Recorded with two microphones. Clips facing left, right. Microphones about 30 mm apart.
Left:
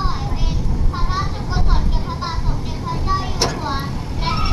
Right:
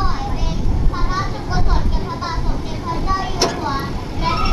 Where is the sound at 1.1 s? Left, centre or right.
Centre.